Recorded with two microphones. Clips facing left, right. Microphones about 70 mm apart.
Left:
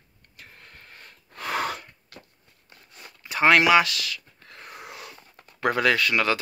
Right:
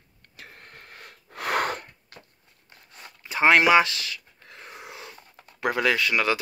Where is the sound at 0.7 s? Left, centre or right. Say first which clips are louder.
Right 2 dB; right.